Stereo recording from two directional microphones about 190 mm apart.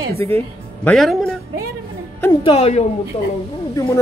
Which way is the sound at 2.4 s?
30° left (ahead or behind).